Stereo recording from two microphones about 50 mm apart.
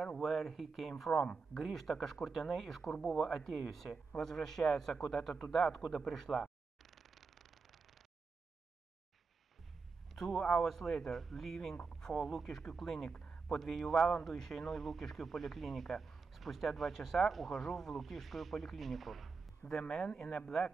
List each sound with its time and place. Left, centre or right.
0.0 s speech: centre
1.2 s a man's voice: centre
10.1 s speech: centre
19.6 s speech: left